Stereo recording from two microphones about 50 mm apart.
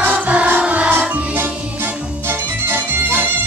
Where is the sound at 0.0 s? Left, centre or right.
Right.